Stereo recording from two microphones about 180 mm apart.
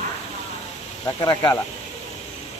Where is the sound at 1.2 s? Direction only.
20° left (ahead or behind).